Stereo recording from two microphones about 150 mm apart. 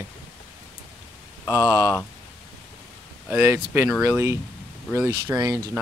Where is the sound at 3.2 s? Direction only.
10° right (ahead or behind).